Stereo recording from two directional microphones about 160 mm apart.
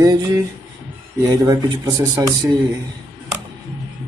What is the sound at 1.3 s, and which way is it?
Speech, 20° right (ahead or behind).